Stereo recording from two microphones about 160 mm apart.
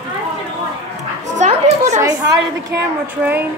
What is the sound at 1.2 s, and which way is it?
Dog, 45° right (ahead or behind).